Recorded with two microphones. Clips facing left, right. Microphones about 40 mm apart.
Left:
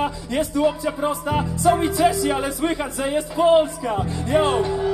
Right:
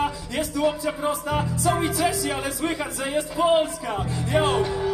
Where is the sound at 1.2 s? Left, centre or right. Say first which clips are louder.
Left 4 dB; centre.